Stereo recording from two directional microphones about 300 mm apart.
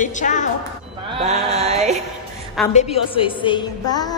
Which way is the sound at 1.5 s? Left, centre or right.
Right.